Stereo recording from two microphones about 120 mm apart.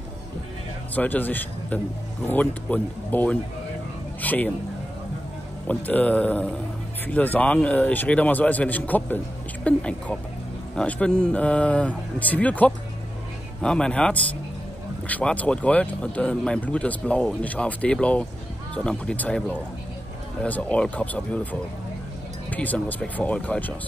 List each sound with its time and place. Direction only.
0.9 s speech: 15° left (ahead or behind)
5.7 s speech: 15° left (ahead or behind)